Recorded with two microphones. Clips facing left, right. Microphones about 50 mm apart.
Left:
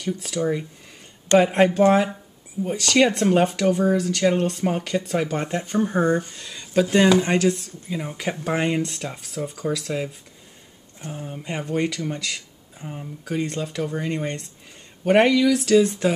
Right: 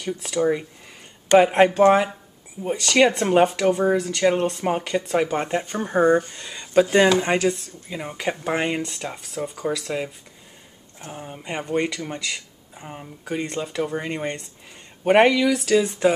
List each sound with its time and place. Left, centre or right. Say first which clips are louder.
0.0 s speech: right 2 dB; centre
6.9 s speech: even; centre
12.1 s a sound: even; centre
12.9 s speech: left 1 dB; centre